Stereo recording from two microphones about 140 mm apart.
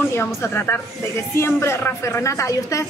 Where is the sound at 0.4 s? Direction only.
15° left (ahead or behind).